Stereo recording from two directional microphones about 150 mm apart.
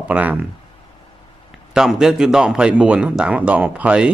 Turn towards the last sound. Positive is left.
turn(degrees=-5)  # may be behind; listen again after turning